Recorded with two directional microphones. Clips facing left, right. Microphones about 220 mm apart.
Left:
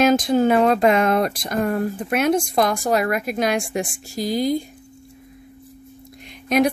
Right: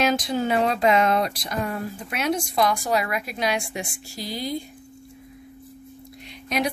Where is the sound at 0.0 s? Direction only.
50° left (ahead or behind).